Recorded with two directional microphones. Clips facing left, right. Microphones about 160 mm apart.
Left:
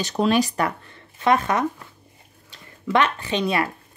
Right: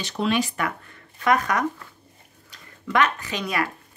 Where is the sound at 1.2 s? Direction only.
25° left (ahead or behind).